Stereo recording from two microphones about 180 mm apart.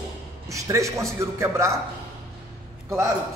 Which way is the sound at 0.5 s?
15° right (ahead or behind).